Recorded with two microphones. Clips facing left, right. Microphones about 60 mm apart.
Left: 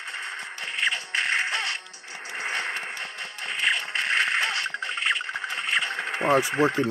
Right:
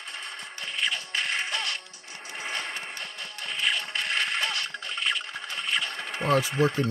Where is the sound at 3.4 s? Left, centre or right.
Left.